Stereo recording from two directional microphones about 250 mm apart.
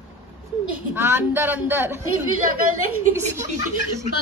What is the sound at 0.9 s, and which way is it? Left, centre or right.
A woman's voice, centre.